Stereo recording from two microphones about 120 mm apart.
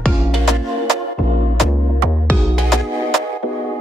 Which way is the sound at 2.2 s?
Centre (ahead or behind).